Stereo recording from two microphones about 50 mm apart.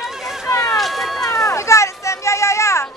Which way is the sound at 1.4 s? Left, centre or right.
Left.